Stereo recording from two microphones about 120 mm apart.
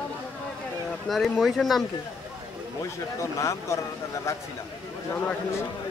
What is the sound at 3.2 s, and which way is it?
Speech, 25° left (ahead or behind).